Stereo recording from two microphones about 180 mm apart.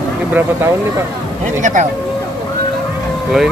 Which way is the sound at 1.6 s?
45° right (ahead or behind).